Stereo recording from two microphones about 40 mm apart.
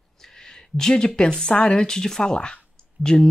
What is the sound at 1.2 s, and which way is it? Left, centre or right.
Speech, left.